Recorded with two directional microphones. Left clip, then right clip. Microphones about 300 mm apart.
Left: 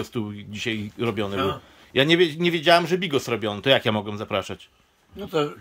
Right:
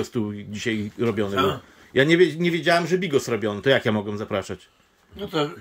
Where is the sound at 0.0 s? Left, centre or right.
Centre.